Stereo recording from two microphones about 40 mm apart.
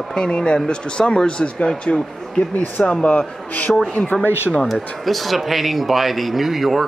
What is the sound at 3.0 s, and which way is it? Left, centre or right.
Speech, left.